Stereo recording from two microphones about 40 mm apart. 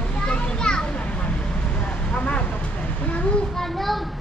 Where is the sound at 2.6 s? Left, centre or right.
Left.